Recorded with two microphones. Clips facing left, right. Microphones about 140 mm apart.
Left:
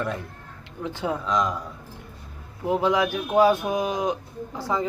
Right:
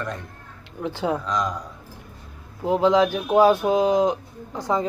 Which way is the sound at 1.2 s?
Centre (ahead or behind).